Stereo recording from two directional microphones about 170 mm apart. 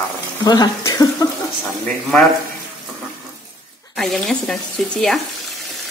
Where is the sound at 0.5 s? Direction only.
25° left (ahead or behind).